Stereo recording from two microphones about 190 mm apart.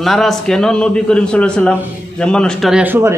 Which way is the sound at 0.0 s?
Centre (ahead or behind).